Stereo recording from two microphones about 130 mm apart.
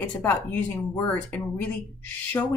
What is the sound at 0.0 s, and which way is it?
Speech, 15° left (ahead or behind).